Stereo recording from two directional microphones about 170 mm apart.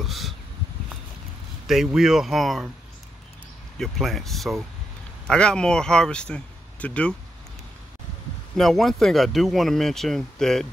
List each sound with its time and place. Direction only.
0.0 s a sound: centre (ahead or behind)
1.7 s speech: centre (ahead or behind)
3.7 s speech: centre (ahead or behind)
8.5 s speech: centre (ahead or behind)